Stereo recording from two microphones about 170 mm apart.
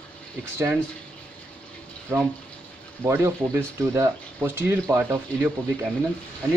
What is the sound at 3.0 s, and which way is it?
Speech, 15° right (ahead or behind).